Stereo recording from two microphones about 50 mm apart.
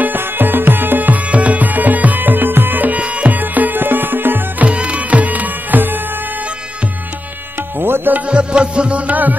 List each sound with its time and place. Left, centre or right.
0.0 s music: right
4.6 s music: right
7.8 s music: right
8.3 s music: right